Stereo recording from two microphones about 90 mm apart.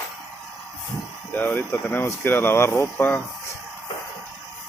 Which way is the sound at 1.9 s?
25° left (ahead or behind).